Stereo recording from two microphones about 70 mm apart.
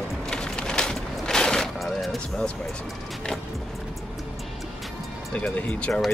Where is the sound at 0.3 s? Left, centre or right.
Centre.